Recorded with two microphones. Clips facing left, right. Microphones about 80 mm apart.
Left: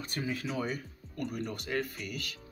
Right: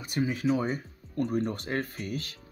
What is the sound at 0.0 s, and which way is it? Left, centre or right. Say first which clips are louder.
Speech: right 7 dB; centre.